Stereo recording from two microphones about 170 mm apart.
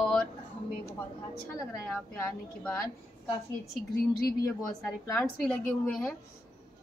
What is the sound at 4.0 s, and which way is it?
Speech, 65° left (ahead or behind).